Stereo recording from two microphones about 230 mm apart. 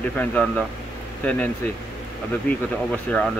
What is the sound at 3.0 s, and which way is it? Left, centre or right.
Speech, centre.